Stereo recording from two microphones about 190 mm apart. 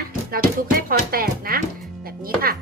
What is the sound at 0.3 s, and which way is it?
Speech, 50° right (ahead or behind).